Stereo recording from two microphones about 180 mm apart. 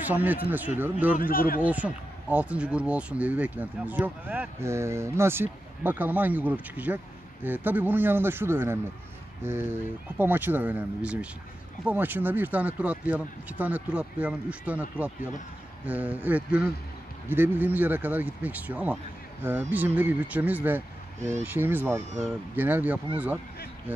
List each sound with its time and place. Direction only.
0.0 s speech: 10° right (ahead or behind)
1.1 s speech: 55° left (ahead or behind)
1.6 s speech: 10° right (ahead or behind)